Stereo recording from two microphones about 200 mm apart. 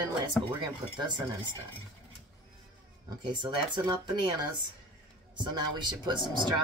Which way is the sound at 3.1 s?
20° right (ahead or behind).